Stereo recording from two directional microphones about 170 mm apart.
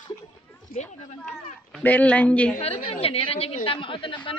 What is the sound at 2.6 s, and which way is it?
A woman's voice, 35° left (ahead or behind).